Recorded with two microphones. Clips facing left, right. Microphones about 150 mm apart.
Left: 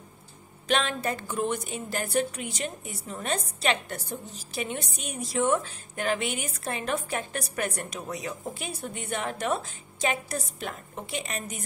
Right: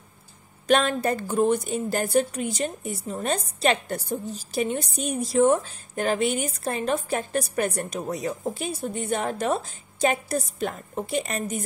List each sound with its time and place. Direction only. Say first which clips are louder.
0.7 s a woman's voice: right 6 dB; 45° right (ahead or behind)